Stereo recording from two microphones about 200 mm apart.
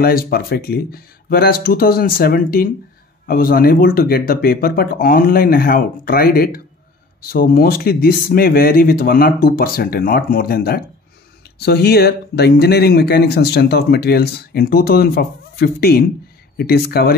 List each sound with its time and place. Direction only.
0.0 s speech: 50° left (ahead or behind)